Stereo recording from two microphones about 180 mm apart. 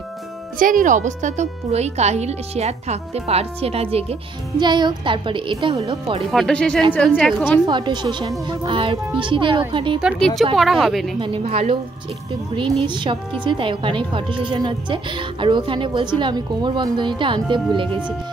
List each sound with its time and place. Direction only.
0.6 s speech: 50° right (ahead or behind); by 6.2 s 30° right (ahead or behind)
6.3 s a woman's voice: 5° left (ahead or behind)
7.6 s a woman's voice: 25° right (ahead or behind)
10.0 s speech: centre (ahead or behind)
11.1 s speech: 30° right (ahead or behind)
12.8 s a woman's voice: 25° right (ahead or behind)